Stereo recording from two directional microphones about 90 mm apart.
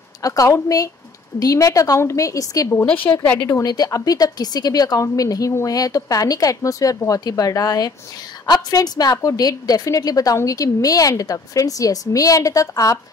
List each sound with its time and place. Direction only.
0.2 s a woman's voice: 40° left (ahead or behind)
2.7 s a woman's voice: 20° left (ahead or behind)
3.4 s a woman's voice: 40° left (ahead or behind)